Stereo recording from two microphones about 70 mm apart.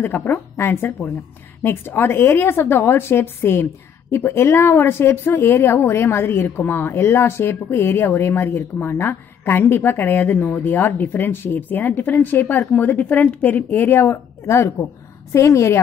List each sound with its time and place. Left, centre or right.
0.0 s a woman's voice: left